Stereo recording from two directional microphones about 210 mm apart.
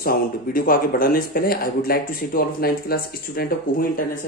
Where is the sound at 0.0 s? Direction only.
45° left (ahead or behind).